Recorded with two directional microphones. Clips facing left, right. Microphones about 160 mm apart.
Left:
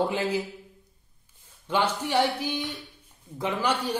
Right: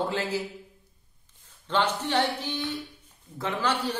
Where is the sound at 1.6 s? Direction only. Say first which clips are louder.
Even; 10° left (ahead or behind).